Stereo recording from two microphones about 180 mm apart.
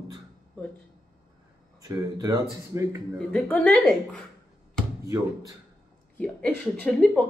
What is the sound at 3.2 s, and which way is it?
A woman's voice, 5° left (ahead or behind).